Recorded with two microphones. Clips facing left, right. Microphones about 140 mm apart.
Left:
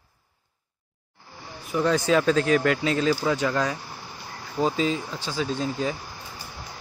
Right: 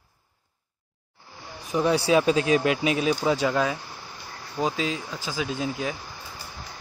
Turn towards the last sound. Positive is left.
turn(degrees=-5)  # may be behind; listen again after turning